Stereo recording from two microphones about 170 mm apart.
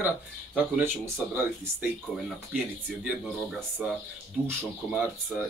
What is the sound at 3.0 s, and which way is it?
Speech, 5° right (ahead or behind).